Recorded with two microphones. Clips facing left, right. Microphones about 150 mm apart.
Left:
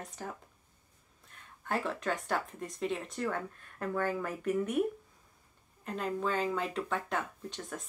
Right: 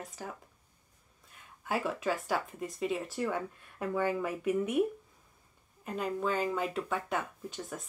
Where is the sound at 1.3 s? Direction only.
5° right (ahead or behind).